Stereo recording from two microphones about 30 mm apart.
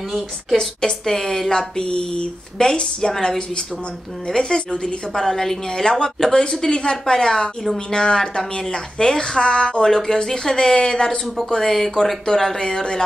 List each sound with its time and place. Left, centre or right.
0.1 s a woman's voice: centre
0.7 s speech: centre
5.2 s a woman's voice: centre
9.4 s speech: left
9.8 s a woman's voice: centre
11.6 s a woman's voice: centre
12.5 s speech: left